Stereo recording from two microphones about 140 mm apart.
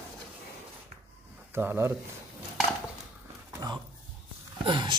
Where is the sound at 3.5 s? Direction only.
25° right (ahead or behind).